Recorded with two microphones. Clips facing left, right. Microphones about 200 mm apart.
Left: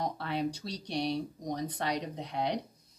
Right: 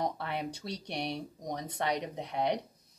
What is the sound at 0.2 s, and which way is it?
Speech, 25° right (ahead or behind).